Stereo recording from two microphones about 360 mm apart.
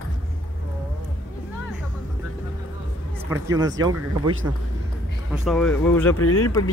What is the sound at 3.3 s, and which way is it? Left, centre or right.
Speech, centre.